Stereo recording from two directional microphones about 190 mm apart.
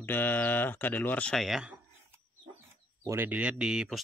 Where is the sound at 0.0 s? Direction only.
10° left (ahead or behind).